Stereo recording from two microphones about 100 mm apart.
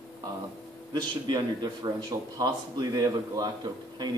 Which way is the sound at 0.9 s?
45° right (ahead or behind).